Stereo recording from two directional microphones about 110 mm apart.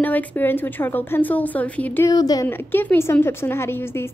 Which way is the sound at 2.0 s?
35° left (ahead or behind).